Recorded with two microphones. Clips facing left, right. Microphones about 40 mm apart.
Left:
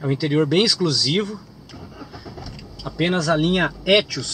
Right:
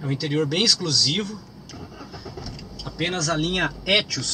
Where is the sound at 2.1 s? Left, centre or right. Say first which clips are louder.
Even; centre.